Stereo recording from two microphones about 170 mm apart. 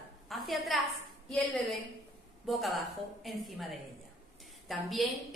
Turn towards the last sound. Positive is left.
turn(degrees=0)  # may be behind; listen again after turning